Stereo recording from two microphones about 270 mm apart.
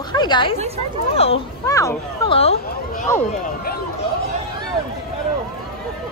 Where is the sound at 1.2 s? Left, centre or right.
Centre.